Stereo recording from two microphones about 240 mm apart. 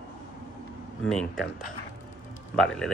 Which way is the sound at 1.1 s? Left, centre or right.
Centre.